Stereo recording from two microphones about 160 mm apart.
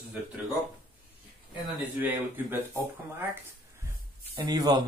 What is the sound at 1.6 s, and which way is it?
Speech, 10° right (ahead or behind).